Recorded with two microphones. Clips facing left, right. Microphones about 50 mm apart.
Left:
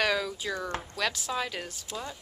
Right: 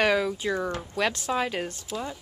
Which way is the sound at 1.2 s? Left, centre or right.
Centre.